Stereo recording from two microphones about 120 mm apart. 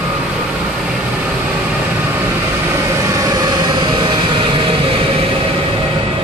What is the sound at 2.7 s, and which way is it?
Vehicle, 25° right (ahead or behind).